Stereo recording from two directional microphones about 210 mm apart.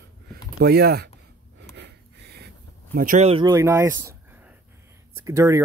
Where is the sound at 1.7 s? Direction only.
55° right (ahead or behind).